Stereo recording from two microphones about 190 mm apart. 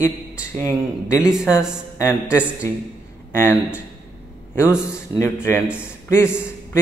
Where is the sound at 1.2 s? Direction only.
5° right (ahead or behind).